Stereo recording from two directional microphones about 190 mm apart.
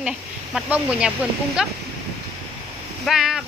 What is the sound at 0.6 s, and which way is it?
Speech, 5° right (ahead or behind).